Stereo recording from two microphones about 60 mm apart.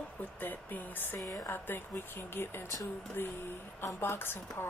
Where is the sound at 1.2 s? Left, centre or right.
Left.